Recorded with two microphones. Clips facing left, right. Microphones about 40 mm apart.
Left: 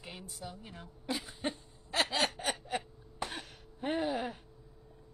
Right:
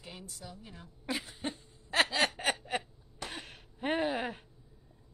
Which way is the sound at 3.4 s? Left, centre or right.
Right.